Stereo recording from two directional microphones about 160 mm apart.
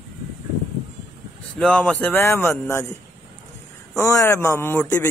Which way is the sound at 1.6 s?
5° left (ahead or behind).